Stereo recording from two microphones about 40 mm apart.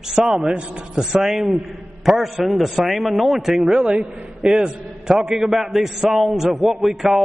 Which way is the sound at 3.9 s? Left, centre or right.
Right.